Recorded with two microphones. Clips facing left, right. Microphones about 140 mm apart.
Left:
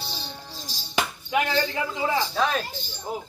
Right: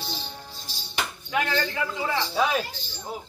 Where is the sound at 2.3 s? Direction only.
10° right (ahead or behind).